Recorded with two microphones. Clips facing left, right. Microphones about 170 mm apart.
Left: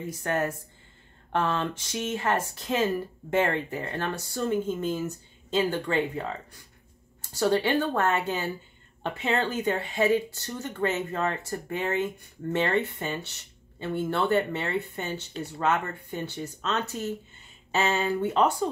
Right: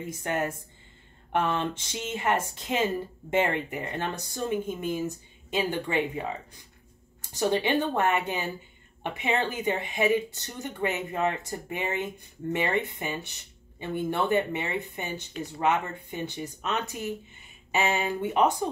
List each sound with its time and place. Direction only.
0.0 s speech: 20° right (ahead or behind)